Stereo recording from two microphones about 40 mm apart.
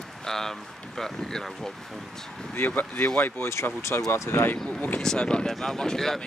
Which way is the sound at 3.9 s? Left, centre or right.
Left.